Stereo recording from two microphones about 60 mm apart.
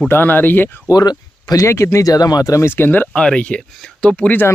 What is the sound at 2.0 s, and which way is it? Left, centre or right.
Speech, left.